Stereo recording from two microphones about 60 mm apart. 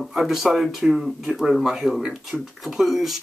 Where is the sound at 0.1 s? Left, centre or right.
Centre.